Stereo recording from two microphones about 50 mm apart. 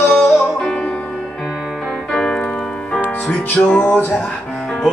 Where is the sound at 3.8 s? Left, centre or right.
Left.